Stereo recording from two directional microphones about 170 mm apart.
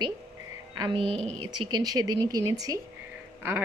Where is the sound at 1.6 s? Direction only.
25° right (ahead or behind).